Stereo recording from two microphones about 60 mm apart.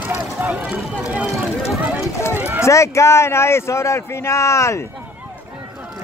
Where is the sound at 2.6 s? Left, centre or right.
Left.